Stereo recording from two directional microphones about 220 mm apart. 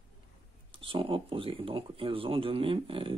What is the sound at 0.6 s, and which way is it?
Speech, 25° right (ahead or behind).